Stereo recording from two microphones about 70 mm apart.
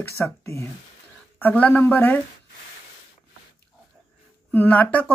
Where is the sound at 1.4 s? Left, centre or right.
Left.